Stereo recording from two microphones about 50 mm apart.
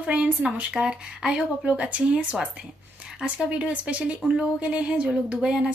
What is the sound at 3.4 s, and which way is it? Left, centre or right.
Speech, right.